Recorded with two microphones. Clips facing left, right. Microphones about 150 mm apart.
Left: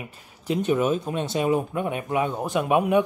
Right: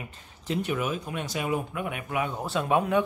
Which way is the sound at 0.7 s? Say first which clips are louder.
Left 7 dB; 25° left (ahead or behind).